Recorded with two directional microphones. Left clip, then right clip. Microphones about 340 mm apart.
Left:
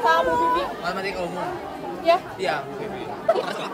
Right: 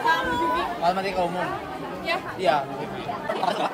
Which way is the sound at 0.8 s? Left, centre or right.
Centre.